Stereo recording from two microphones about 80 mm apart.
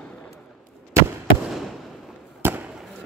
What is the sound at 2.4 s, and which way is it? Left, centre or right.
Fireworks, right.